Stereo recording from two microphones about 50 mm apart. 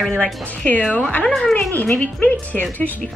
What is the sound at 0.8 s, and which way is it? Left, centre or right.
Speech, left.